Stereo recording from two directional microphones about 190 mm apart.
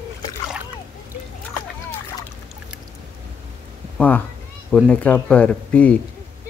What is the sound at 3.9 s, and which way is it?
Speech, 10° left (ahead or behind).